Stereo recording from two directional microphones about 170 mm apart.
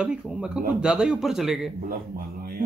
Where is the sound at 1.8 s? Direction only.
60° right (ahead or behind).